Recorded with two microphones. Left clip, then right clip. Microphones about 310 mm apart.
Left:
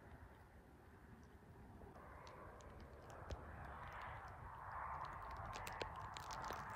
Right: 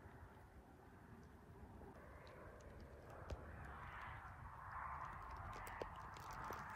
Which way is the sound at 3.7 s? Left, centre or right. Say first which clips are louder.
Left 1 dB; left.